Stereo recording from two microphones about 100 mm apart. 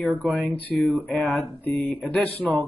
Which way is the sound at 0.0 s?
15° left (ahead or behind).